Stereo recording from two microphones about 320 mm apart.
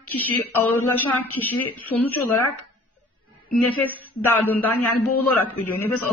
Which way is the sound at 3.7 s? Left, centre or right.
Centre.